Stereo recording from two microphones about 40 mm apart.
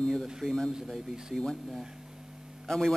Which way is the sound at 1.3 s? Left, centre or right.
Centre.